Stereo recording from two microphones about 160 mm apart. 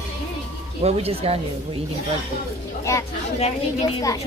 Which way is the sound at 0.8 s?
40° right (ahead or behind).